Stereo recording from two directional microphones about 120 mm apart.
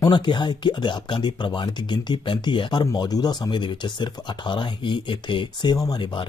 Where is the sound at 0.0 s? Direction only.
40° left (ahead or behind).